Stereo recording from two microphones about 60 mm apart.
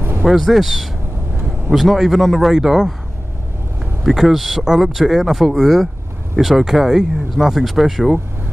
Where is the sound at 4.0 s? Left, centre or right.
Centre.